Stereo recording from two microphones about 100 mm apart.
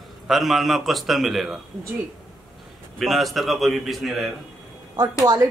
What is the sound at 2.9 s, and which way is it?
A man's voice, centre (ahead or behind).